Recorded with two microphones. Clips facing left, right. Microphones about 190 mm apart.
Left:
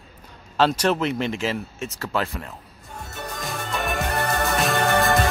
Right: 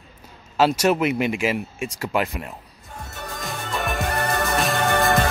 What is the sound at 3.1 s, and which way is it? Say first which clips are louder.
Music: left 1 dB; centre (ahead or behind).